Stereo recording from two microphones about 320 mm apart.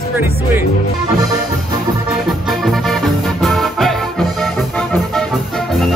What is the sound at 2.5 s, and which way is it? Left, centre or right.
Music, centre.